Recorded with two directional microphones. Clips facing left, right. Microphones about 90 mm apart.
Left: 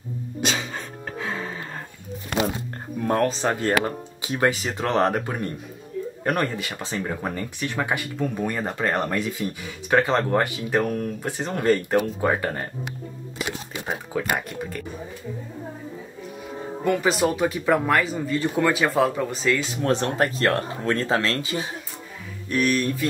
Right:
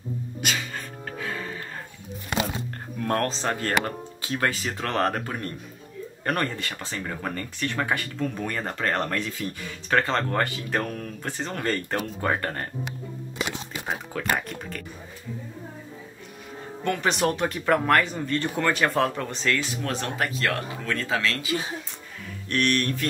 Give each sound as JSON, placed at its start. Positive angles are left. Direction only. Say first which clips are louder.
{"t": 0.5, "sound": "music", "louder": "left 2 dB", "side_deg": 15}
{"t": 3.0, "sound": "speech", "louder": "left 4 dB", "side_deg": 10}
{"t": 13.8, "sound": "speech", "louder": "left 2 dB", "side_deg": 10}
{"t": 16.8, "sound": "speech", "louder": "left 3 dB", "side_deg": 5}
{"t": 19.8, "sound": "speech", "louder": "left 6 dB", "side_deg": 35}
{"t": 22.5, "sound": "speech", "louder": "left 2 dB", "side_deg": 5}